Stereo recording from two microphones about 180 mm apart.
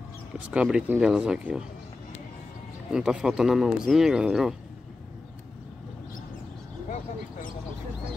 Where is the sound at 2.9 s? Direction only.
5° right (ahead or behind).